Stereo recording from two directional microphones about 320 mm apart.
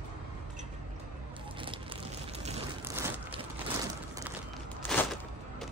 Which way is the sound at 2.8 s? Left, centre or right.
Centre.